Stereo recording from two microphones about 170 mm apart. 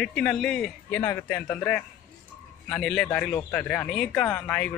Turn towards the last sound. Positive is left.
turn(degrees=10)  # may be behind; listen again after turning